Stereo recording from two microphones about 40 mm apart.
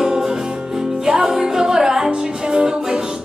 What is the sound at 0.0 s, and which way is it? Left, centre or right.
Music, centre.